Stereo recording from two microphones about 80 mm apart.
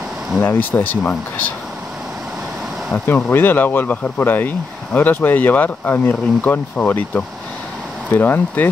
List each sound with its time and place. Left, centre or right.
0.4 s speech: left
3.1 s speech: left